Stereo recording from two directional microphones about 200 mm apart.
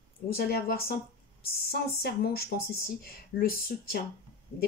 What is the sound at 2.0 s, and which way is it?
Speech, 50° left (ahead or behind).